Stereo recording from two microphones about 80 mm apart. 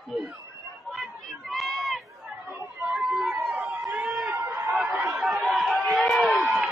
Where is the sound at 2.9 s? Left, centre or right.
Centre.